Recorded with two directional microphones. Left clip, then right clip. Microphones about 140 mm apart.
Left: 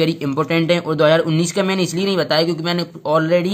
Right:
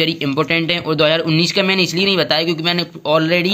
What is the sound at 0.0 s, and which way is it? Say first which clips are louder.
A man's voice: right 1 dB; 5° right (ahead or behind).